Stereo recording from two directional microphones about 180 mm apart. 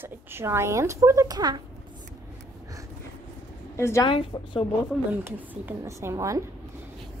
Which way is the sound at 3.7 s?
15° left (ahead or behind).